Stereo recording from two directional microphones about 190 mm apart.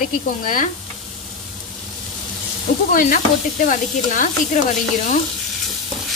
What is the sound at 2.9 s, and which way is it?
Speech, 45° left (ahead or behind).